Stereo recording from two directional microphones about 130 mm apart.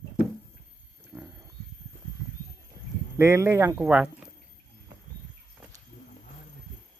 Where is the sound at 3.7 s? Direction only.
10° right (ahead or behind).